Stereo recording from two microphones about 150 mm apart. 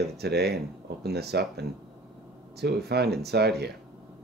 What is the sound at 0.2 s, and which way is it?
Speech, 90° right.